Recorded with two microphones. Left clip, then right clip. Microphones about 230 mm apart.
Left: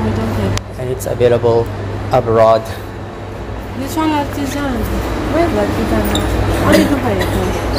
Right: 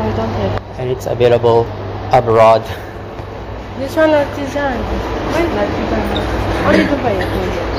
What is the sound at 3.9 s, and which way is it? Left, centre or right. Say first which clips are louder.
Speech: right 5 dB; left.